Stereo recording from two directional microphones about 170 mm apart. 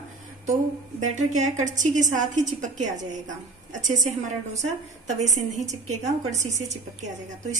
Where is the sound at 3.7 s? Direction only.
45° right (ahead or behind).